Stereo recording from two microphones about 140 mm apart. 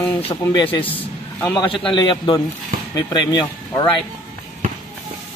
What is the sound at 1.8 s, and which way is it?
Speech, 35° left (ahead or behind).